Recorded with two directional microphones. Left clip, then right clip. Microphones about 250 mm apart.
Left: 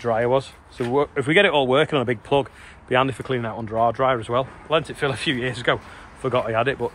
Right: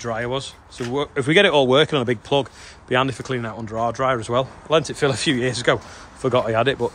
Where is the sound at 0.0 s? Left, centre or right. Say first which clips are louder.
Left 5 dB; centre.